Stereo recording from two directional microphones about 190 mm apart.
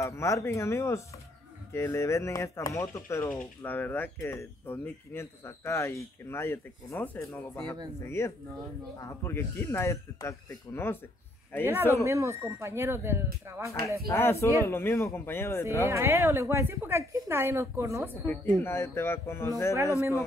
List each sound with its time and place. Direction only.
0.0 s speech: 15° left (ahead or behind)
9.0 s speech: 15° left (ahead or behind)
11.6 s speech: 10° right (ahead or behind)
13.7 s speech: 15° left (ahead or behind)
15.9 s speech: 15° right (ahead or behind)
18.2 s speech: 10° left (ahead or behind)